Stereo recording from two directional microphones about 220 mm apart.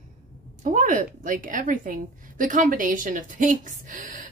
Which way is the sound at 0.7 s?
35° right (ahead or behind).